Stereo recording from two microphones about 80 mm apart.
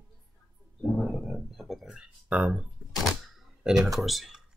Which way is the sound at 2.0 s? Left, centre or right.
Centre.